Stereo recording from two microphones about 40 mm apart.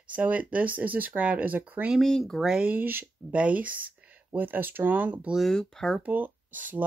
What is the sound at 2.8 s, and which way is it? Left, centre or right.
Speech, right.